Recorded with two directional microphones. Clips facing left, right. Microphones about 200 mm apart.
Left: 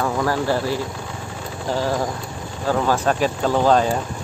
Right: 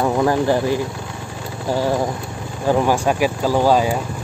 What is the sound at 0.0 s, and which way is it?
Speech, 20° right (ahead or behind).